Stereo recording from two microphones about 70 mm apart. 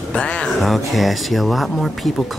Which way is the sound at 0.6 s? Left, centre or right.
Centre.